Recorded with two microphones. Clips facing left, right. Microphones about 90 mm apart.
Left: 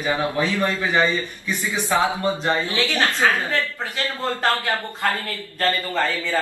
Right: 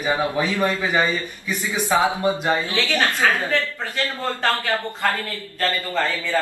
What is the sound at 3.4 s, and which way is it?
Speech, 20° left (ahead or behind).